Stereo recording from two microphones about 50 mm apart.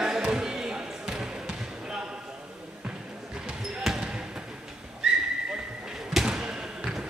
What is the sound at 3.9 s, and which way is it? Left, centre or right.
Basketball bounce, centre.